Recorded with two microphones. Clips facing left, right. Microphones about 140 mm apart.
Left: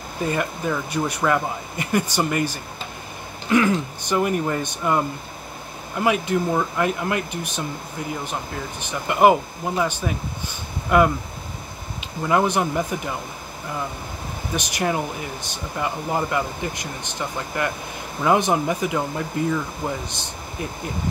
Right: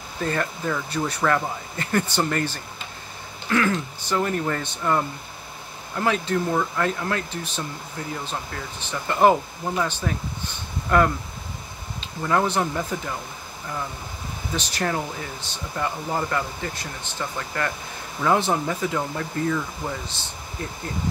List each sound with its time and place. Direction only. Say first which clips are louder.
0.2 s speech: left 2 dB; 10° left (ahead or behind)
14.5 s speech: left 2 dB; 15° left (ahead or behind)